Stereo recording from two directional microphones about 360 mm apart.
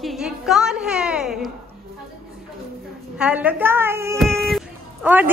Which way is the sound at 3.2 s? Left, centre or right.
Centre.